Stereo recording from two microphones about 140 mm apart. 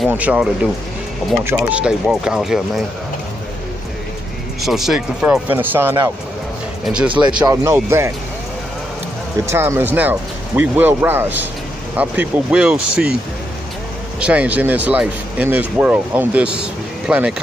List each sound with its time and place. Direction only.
0.1 s speech: 10° right (ahead or behind)
4.6 s speech: centre (ahead or behind)
7.4 s speech: 20° right (ahead or behind)
9.5 s speech: 20° right (ahead or behind)
14.2 s speech: 10° right (ahead or behind)